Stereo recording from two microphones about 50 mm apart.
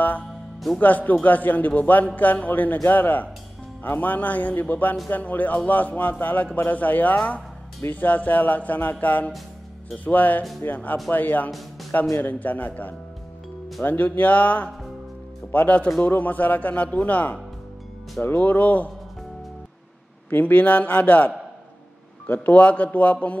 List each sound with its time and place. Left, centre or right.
0.7 s a man's voice: left
20.2 s a man's voice: left